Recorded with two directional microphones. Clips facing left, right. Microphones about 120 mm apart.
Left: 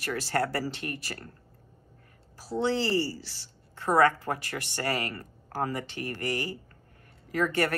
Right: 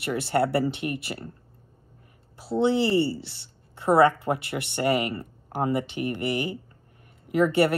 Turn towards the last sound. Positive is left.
turn(degrees=-20)  # may be behind; listen again after turning